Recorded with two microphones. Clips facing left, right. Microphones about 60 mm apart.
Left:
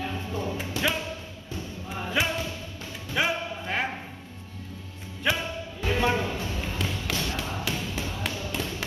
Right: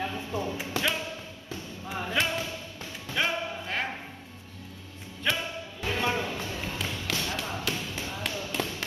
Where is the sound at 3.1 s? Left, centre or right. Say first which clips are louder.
Left 2 dB; centre.